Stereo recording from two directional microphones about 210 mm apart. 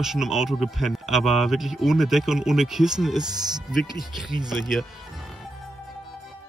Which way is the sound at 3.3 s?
20° right (ahead or behind).